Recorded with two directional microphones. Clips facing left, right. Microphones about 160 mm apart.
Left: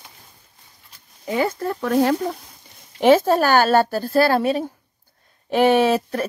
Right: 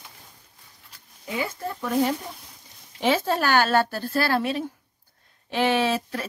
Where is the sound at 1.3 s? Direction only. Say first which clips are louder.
Left 8 dB; 55° left (ahead or behind); by 2.4 s 75° left (ahead or behind).